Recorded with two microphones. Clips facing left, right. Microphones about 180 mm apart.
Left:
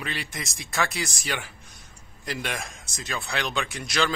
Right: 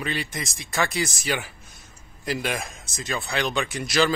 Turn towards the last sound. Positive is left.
turn(degrees=-5)  # may be behind; listen again after turning